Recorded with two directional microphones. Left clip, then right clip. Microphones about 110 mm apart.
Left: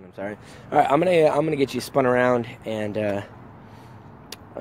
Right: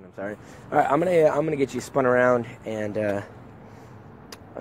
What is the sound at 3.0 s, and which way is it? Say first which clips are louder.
Speech: right 1 dB; 35° left (ahead or behind).